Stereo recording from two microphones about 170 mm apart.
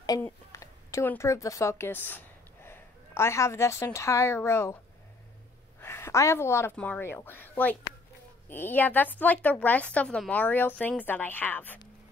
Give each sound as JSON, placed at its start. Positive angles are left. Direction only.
{"t": 0.5, "sound": "speech", "side_deg": 15}
{"t": 5.8, "sound": "a woman's voice", "side_deg": 15}